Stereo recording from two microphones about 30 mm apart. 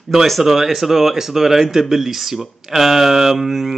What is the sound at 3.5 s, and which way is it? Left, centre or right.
Speech, centre.